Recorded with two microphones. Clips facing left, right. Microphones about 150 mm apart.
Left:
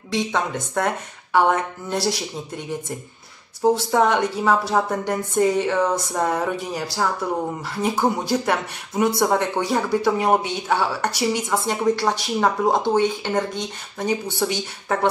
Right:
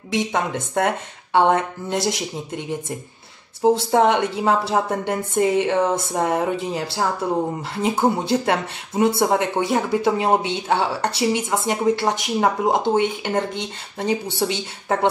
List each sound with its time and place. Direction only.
0.1 s speech: 20° right (ahead or behind)